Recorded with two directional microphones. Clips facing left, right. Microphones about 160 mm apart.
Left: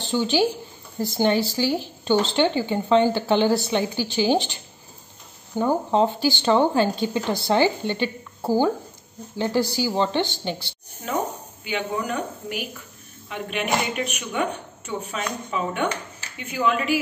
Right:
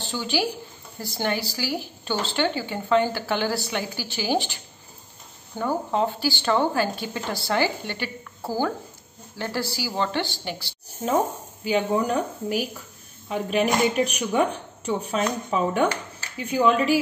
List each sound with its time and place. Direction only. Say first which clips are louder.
0.0 s a woman's voice: left 5 dB; 20° left (ahead or behind)
5.6 s speech: left 4 dB; 20° left (ahead or behind)
11.6 s speech: right 5 dB; 40° right (ahead or behind)